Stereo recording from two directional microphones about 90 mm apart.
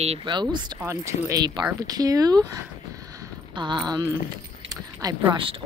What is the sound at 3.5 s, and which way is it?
A woman's voice, 60° right (ahead or behind).